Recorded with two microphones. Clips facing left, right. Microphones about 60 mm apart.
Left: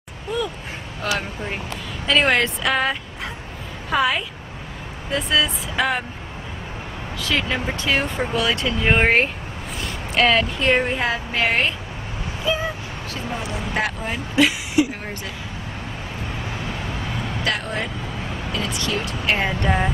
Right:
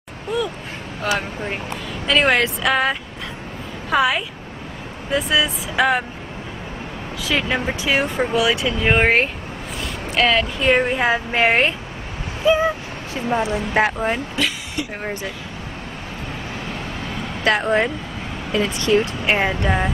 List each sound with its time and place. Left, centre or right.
0.3 s a sound: centre
2.0 s speech: centre
7.2 s speech: centre
11.0 s a woman's voice: right
13.1 s a woman's voice: right
14.3 s speech: centre
17.5 s a woman's voice: right
19.6 s speech: centre